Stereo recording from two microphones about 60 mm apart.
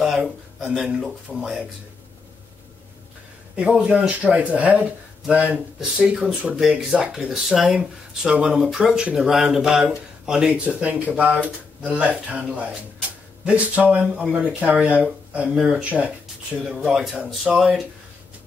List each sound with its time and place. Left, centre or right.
0.7 s speech: centre
3.5 s speech: centre
16.6 s speech: centre